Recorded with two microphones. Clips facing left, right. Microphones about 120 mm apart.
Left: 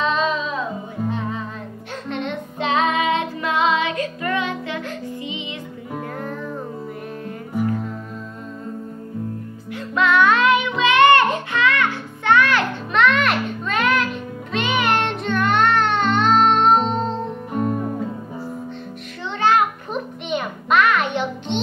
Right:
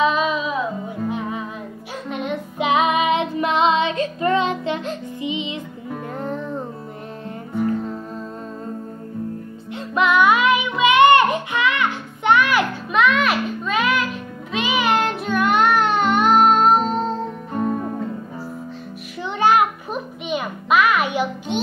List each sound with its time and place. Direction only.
0.0 s music: 5° right (ahead or behind)
2.0 s music: 5° right (ahead or behind); by 6.4 s 25° right (ahead or behind)
9.7 s music: 20° right (ahead or behind); by 10.7 s 5° right (ahead or behind)
10.8 s music: 15° right (ahead or behind); by 18.0 s 5° left (ahead or behind)
19.4 s a sound: 15° right (ahead or behind)
19.9 s music: centre (ahead or behind)